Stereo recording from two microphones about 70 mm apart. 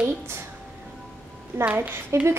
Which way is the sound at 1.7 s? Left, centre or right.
Right.